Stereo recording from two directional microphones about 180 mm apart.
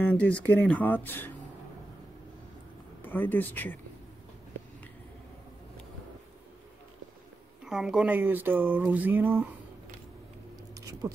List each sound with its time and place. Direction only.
0.0 s speech: 10° left (ahead or behind)
3.0 s speech: 10° left (ahead or behind)
7.6 s speech: centre (ahead or behind)
10.9 s a sound: 20° right (ahead or behind)